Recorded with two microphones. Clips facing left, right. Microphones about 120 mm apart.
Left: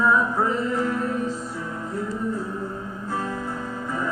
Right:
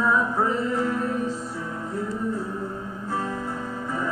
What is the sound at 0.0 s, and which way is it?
Music, 30° right (ahead or behind).